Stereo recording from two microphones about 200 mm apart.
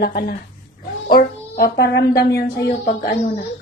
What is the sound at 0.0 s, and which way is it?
Speech, 50° left (ahead or behind).